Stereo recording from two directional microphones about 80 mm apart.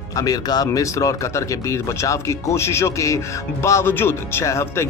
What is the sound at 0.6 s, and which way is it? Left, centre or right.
Speech, left.